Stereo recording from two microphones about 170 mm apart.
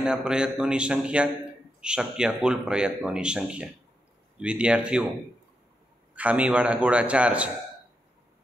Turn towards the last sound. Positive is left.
turn(degrees=-5)  # may be behind; listen again after turning